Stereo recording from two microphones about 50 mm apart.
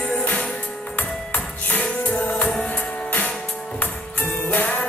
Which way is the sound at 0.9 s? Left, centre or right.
Left.